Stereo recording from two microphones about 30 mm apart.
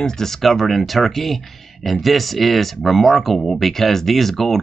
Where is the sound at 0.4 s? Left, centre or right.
Centre.